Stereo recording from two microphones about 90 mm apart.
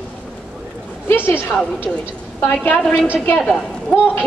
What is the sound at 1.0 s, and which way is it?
Speech, 25° left (ahead or behind).